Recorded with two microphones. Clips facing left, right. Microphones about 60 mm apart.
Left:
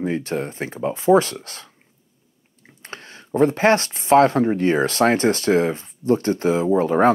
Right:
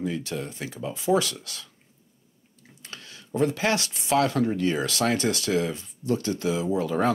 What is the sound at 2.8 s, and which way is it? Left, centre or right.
Speech, left.